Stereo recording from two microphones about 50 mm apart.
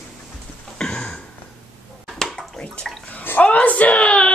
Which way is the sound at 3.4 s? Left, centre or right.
Left.